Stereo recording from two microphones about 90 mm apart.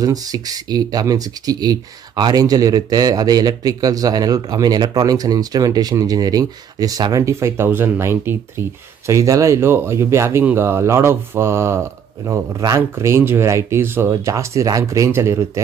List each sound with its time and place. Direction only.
0.0 s speech: 45° right (ahead or behind)
12.9 s speech: 25° right (ahead or behind)